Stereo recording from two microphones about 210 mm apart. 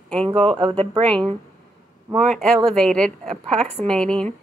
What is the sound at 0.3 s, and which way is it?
Speech, 25° right (ahead or behind).